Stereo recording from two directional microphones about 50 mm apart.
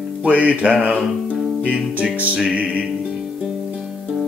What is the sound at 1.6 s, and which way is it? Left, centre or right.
Music, right.